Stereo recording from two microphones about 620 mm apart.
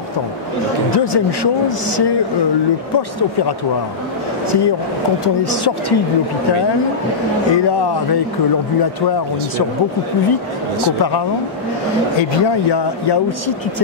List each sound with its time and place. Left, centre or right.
0.9 s speech: left
5.2 s speech: left
7.5 s speech: left
12.2 s speech: left